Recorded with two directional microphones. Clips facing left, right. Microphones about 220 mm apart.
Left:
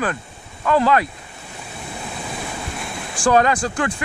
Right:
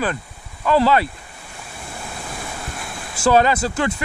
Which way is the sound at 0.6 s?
Centre (ahead or behind).